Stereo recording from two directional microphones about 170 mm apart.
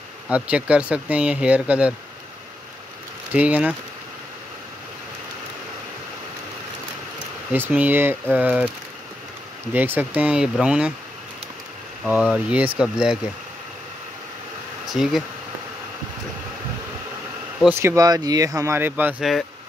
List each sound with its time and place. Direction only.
0.3 s speech: 5° right (ahead or behind)
3.3 s speech: 10° right (ahead or behind)
7.5 s speech: 10° right (ahead or behind)
9.8 s speech: 10° right (ahead or behind)
12.0 s speech: 5° right (ahead or behind)
14.9 s speech: centre (ahead or behind)
17.6 s speech: 15° right (ahead or behind)